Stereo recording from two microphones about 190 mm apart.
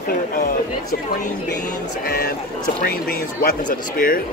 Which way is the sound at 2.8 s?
50° left (ahead or behind).